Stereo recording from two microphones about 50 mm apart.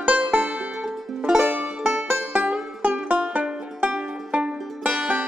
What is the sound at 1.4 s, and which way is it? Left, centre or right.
Music, right.